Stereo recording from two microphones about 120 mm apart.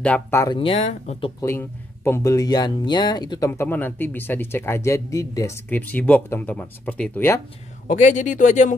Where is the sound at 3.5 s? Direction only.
15° left (ahead or behind).